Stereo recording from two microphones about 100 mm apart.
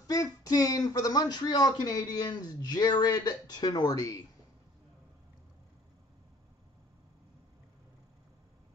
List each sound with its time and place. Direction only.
0.0 s speech: 35° left (ahead or behind)